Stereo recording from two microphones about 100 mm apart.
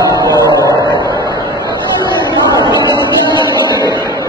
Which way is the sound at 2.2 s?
40° left (ahead or behind).